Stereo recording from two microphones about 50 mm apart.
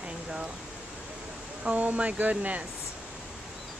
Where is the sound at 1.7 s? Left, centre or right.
Right.